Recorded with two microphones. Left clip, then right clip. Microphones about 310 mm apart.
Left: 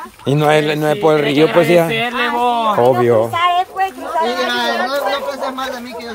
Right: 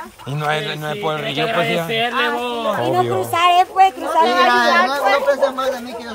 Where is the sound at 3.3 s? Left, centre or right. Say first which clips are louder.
Right 1 dB; right.